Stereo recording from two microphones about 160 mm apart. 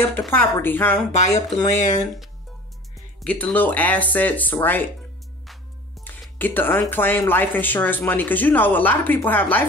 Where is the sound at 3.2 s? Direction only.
5° left (ahead or behind).